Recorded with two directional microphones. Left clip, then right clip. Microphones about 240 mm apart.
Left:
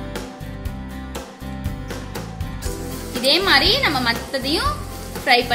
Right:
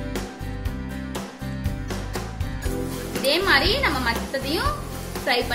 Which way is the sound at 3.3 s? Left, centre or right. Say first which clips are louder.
Left 4 dB; centre.